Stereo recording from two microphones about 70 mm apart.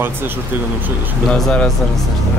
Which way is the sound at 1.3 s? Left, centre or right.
Centre.